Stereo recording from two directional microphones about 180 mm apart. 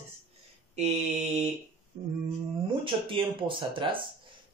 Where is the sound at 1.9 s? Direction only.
20° right (ahead or behind).